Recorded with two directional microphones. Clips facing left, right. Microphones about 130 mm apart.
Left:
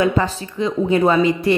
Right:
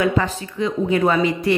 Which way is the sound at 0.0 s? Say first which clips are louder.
Left 2 dB; 30° left (ahead or behind).